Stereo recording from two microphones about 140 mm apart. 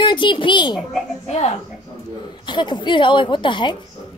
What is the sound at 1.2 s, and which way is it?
Speech, 50° left (ahead or behind).